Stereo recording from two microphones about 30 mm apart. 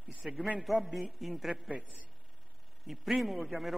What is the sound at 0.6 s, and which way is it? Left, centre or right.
Speech, centre.